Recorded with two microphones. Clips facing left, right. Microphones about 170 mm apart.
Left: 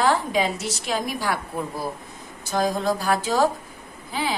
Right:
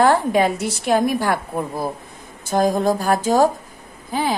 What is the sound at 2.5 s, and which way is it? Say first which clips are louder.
Speech: right 5 dB; 50° right (ahead or behind).